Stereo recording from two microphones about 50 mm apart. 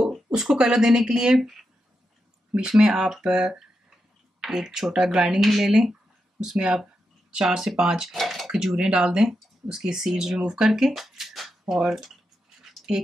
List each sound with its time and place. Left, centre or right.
0.0 s speech: centre
8.2 s speech: centre
8.7 s speech: centre
11.6 s speech: centre
11.9 s a sound: centre